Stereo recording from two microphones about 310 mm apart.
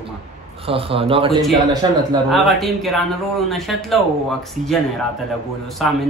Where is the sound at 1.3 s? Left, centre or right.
Centre.